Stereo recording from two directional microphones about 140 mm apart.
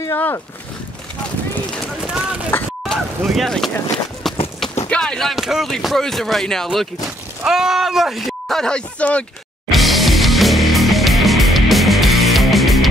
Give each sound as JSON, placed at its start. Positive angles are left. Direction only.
{"t": 0.0, "sound": "speech", "side_deg": 20}
{"t": 2.0, "sound": "speech", "side_deg": -10}
{"t": 2.8, "sound": "a sound", "side_deg": 0}
{"t": 4.8, "sound": "speech", "side_deg": 5}
{"t": 9.7, "sound": "music", "side_deg": 0}